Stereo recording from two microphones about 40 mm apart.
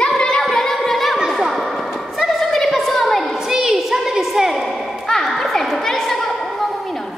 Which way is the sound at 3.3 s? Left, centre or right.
Centre.